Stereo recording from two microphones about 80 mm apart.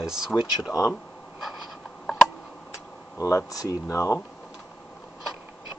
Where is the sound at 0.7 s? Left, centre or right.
Left.